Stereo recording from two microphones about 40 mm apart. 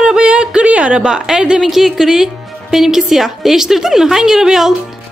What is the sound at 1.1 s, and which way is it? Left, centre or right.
Speech, centre.